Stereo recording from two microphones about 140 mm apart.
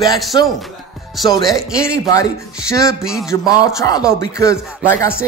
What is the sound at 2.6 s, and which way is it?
Music, 20° left (ahead or behind).